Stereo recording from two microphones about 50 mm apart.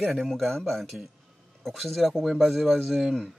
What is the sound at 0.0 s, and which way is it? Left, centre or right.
Speech, centre.